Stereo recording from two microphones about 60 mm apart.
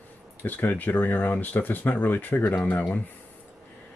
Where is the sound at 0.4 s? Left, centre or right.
Left.